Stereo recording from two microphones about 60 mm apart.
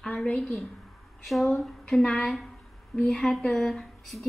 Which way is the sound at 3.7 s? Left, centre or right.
Centre.